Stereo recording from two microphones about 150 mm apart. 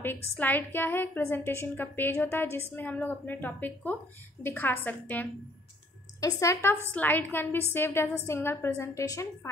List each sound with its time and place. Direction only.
0.4 s a woman's voice: 10° left (ahead or behind)